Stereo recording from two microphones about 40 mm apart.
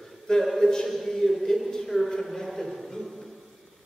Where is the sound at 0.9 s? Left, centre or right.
Centre.